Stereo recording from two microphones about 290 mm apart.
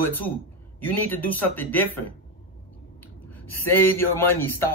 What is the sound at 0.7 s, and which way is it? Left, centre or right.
A man's voice, centre.